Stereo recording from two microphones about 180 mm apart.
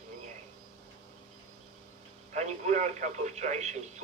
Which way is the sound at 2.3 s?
40° right (ahead or behind).